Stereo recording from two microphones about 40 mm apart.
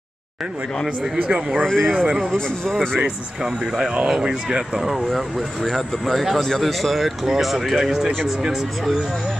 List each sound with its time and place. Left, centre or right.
1.1 s speech: right
1.6 s a man's voice: centre
4.2 s speech: right
5.1 s speech: centre